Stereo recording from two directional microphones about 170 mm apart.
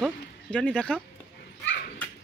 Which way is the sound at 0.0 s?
5° left (ahead or behind).